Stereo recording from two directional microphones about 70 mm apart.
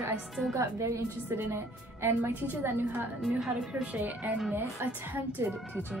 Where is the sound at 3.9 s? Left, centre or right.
Right.